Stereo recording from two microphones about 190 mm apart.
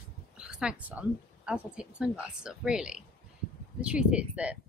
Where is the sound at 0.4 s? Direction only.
5° right (ahead or behind).